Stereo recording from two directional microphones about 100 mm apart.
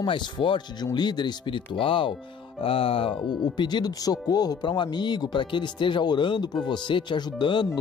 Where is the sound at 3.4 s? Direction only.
45° left (ahead or behind).